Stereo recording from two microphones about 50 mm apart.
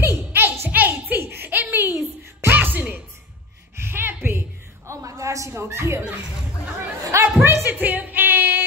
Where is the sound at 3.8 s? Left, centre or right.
Right.